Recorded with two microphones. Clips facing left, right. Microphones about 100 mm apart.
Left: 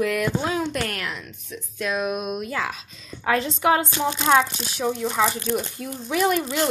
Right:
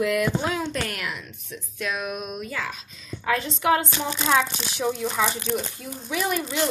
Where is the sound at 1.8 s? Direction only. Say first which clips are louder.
Left 4 dB; 25° left (ahead or behind).